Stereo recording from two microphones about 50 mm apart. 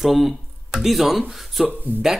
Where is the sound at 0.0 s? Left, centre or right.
Centre.